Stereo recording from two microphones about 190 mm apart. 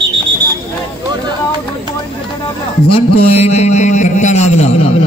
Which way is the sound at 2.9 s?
30° left (ahead or behind).